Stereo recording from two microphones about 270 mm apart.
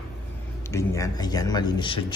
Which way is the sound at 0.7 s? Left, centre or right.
Centre.